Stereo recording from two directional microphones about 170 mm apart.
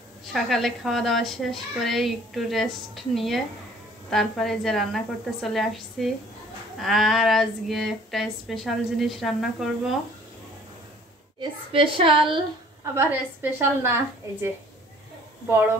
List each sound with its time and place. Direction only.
0.3 s speech: centre (ahead or behind)
11.7 s a woman's voice: 30° right (ahead or behind)
12.9 s a woman's voice: 15° right (ahead or behind)